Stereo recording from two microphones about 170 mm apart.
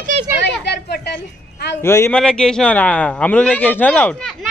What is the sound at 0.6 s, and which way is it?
Speech, 80° left.